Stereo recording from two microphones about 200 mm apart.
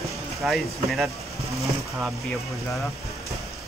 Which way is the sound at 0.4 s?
Centre (ahead or behind).